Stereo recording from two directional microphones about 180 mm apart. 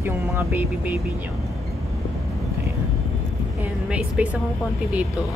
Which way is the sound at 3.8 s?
5° right (ahead or behind).